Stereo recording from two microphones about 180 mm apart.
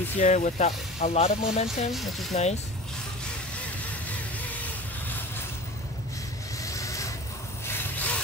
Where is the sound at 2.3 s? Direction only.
35° left (ahead or behind).